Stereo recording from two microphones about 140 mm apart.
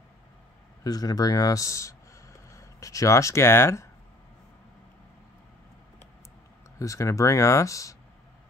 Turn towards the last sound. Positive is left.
turn(degrees=25)  # may be behind; listen again after turning